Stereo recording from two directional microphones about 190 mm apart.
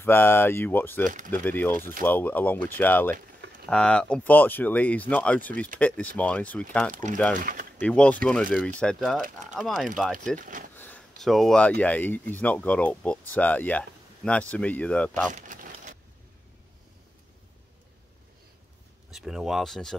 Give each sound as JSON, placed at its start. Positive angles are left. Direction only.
{"t": 0.0, "sound": "speech", "side_deg": 10}
{"t": 1.0, "sound": "speech", "side_deg": -45}
{"t": 1.3, "sound": "speech", "side_deg": 10}
{"t": 6.9, "sound": "speech", "side_deg": -40}
{"t": 7.3, "sound": "a sound", "side_deg": -45}
{"t": 7.8, "sound": "speech", "side_deg": 5}
{"t": 10.8, "sound": "a sound", "side_deg": 5}
{"t": 11.8, "sound": "speech", "side_deg": 10}
{"t": 15.3, "sound": "crumpling", "side_deg": -40}
{"t": 19.0, "sound": "speech", "side_deg": 0}